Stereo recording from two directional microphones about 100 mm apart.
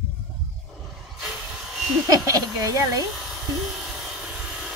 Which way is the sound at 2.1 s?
35° right (ahead or behind).